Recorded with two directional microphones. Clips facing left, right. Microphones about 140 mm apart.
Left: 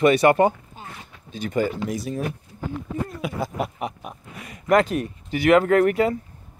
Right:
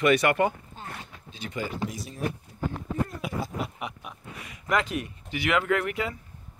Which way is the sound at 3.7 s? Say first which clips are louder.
Left 6 dB; 40° left (ahead or behind).